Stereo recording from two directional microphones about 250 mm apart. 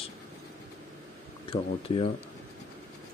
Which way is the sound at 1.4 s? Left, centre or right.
Left.